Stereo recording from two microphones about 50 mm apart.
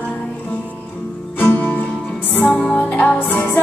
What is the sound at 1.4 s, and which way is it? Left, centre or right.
Music, left.